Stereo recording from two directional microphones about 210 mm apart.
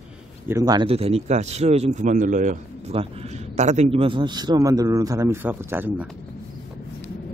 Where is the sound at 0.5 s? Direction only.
15° right (ahead or behind).